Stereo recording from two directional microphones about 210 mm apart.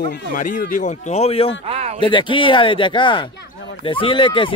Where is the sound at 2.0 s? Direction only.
20° left (ahead or behind).